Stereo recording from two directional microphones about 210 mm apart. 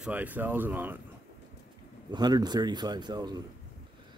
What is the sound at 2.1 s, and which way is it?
A man's voice, 20° right (ahead or behind).